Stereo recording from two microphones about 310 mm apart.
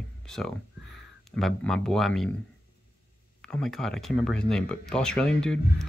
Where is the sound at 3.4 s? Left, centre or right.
Centre.